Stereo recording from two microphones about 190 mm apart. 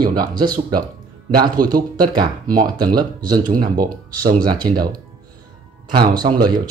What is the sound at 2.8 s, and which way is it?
Speech, 20° right (ahead or behind).